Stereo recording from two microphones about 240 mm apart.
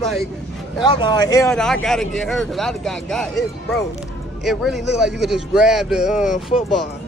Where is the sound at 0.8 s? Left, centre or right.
Centre.